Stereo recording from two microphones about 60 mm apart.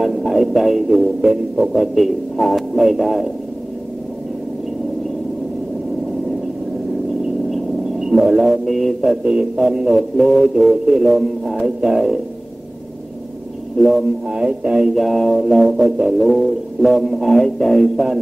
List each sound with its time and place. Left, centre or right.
0.0 s music: centre
7.5 s speech: centre
9.2 s speech: centre
9.9 s music: centre
13.7 s music: centre
14.3 s speech: centre
15.0 s music: centre